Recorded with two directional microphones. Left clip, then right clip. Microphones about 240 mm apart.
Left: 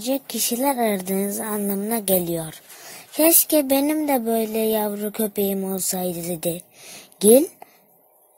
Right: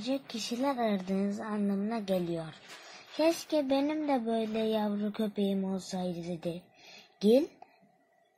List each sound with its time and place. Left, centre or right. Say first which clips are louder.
0.0 s a woman's voice: left 10 dB; left